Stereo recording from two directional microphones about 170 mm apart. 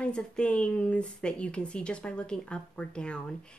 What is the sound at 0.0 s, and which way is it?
Speech, 5° left (ahead or behind).